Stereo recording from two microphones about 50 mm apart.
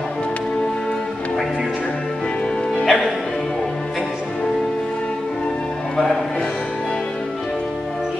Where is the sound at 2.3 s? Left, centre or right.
Centre.